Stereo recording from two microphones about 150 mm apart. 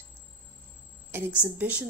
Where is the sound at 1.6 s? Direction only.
10° right (ahead or behind).